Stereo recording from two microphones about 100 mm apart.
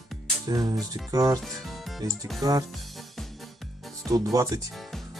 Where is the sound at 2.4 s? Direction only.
40° right (ahead or behind).